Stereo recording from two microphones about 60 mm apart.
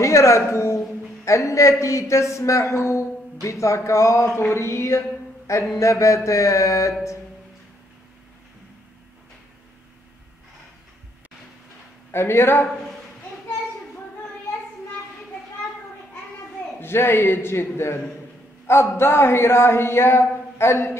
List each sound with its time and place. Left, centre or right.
0.0 s a man's voice: left
12.1 s a man's voice: left
16.8 s a man's voice: left